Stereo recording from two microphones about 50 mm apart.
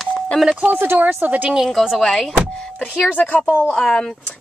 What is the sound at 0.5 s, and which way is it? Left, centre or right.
Speech, right.